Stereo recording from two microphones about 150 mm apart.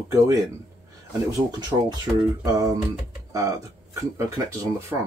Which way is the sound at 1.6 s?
25° right (ahead or behind).